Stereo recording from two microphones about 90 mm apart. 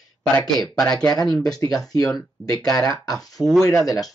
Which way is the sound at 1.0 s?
45° left (ahead or behind).